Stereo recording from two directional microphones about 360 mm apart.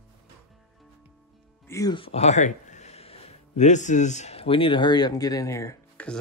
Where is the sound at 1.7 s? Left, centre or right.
Centre.